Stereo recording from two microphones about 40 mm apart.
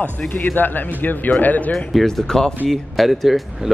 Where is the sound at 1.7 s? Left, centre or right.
Centre.